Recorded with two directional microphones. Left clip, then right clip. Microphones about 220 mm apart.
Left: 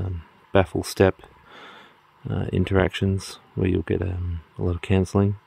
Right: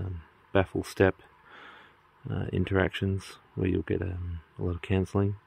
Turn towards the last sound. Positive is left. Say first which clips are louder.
# left 6 dB
turn(degrees=50)  # may be behind; listen again after turning